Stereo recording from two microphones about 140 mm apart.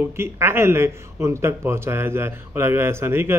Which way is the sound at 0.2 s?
15° right (ahead or behind).